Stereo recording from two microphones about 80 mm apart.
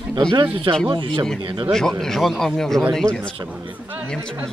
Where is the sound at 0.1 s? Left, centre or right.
Right.